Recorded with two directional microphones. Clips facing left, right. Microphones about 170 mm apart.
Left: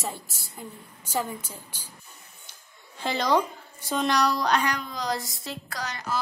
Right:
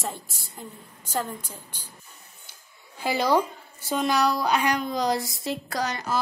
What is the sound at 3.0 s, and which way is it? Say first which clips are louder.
A woman's voice: right 2 dB; 10° right (ahead or behind).